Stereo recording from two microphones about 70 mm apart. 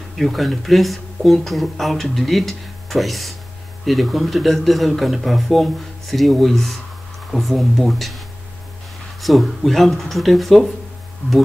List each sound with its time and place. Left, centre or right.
0.2 s speech: centre
9.2 s speech: centre